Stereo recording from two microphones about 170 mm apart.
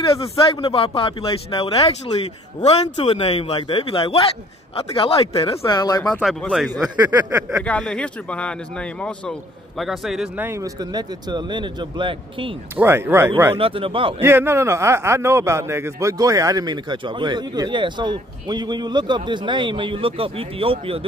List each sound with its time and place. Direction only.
0.2 s a man's voice: 35° left (ahead or behind)
5.6 s speech: 20° left (ahead or behind)
6.0 s speech: 5° left (ahead or behind)
6.8 s a sound: 10° right (ahead or behind)
7.6 s a man's voice: 5° left (ahead or behind); by 12.5 s 30° right (ahead or behind)
12.7 s a sound: 15° right (ahead or behind)
13.6 s a man's voice: 30° right (ahead or behind)
14.2 s a man's voice: 15° right (ahead or behind); by 21.0 s 35° right (ahead or behind)